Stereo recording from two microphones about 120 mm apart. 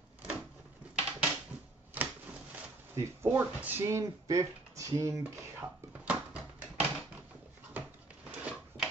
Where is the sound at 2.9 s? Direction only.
20° right (ahead or behind).